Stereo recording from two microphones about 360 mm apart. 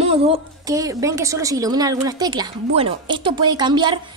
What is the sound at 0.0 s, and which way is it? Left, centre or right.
A woman's voice, centre.